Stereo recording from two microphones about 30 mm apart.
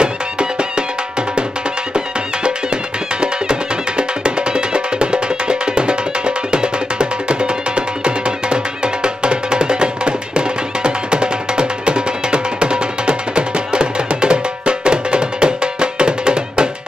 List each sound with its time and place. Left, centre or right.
0.0 s music: right
3.2 s music: right